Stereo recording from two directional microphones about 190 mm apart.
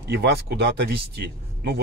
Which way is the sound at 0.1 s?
60° right (ahead or behind).